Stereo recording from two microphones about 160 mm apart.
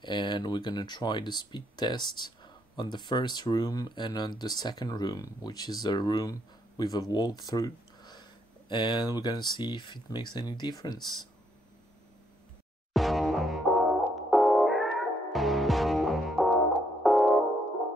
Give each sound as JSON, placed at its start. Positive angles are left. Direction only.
{"t": 0.0, "sound": "speech", "side_deg": 30}
{"t": 12.9, "sound": "music", "side_deg": 0}